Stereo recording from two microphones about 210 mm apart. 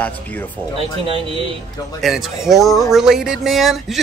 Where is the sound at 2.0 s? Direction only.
Centre (ahead or behind).